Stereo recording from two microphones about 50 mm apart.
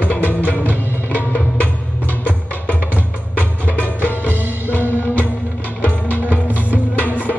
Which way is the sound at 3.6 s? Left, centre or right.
Left.